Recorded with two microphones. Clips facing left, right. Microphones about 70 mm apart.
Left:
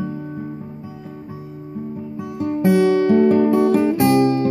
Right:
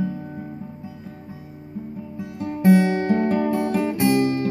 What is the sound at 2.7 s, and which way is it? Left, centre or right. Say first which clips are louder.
Guitar: left 3 dB; right.